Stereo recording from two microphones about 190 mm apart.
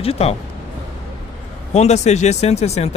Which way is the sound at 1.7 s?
35° left (ahead or behind).